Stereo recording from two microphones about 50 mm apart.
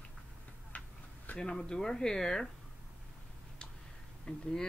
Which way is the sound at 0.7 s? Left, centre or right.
Left.